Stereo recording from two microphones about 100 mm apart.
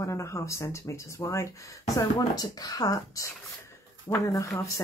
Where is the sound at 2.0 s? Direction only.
40° left (ahead or behind).